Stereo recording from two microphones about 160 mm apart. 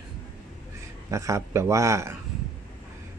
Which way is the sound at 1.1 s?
20° right (ahead or behind).